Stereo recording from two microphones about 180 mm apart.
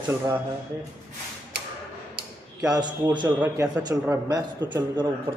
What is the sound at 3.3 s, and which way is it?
A man's voice, 10° right (ahead or behind).